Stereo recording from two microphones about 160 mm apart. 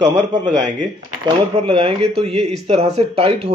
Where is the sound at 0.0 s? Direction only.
25° right (ahead or behind).